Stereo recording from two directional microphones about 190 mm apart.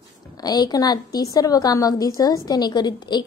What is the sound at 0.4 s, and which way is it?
A woman's voice, 20° left (ahead or behind).